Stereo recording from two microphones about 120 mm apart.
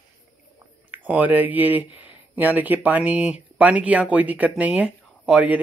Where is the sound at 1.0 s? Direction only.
15° right (ahead or behind).